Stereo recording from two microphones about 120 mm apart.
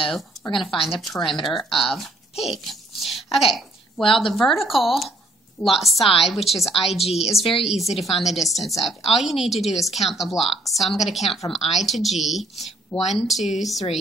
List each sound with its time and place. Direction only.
0.6 s speech: centre (ahead or behind)
4.0 s speech: 45° left (ahead or behind)
4.3 s speech: centre (ahead or behind)
7.1 s speech: 60° left (ahead or behind)
7.9 s speech: centre (ahead or behind)